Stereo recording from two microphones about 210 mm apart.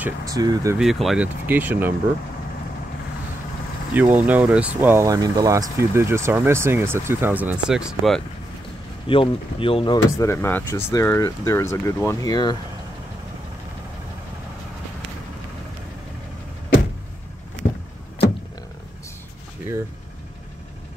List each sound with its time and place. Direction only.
0.0 s speech: 15° right (ahead or behind)
0.7 s speech: centre (ahead or behind)
3.9 s speech: 10° right (ahead or behind)
9.0 s speech: 25° left (ahead or behind)
10.1 s speech: 10° left (ahead or behind)